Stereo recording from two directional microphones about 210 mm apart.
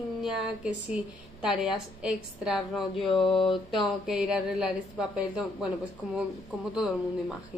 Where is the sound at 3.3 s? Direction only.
25° left (ahead or behind).